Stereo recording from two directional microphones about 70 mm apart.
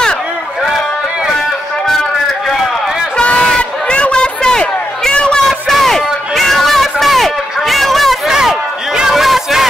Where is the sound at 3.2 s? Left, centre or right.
Centre.